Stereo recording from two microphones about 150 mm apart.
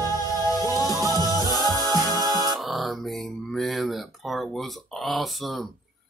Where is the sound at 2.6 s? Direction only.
Centre (ahead or behind).